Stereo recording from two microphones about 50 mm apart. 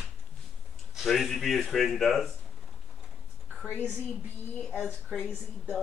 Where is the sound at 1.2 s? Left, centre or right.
Centre.